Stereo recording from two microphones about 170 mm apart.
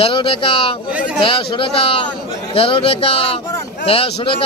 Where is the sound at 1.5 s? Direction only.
30° left (ahead or behind).